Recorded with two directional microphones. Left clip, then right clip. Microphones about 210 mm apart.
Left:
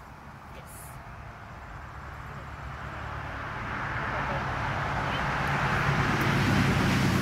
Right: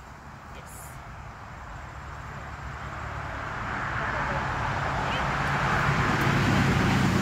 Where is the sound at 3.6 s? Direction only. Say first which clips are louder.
Right 3 dB; 30° left (ahead or behind).